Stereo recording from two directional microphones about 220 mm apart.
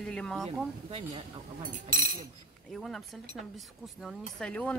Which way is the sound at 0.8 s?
25° right (ahead or behind).